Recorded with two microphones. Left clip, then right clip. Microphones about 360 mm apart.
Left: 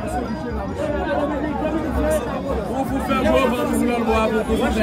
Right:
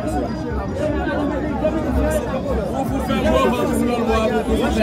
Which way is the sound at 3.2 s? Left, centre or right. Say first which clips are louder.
Right 2 dB; left.